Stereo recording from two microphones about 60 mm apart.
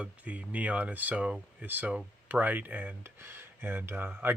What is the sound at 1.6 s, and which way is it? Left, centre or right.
Speech, right.